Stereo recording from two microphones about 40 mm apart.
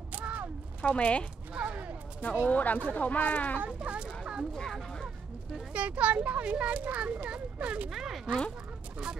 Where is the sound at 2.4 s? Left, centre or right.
Left.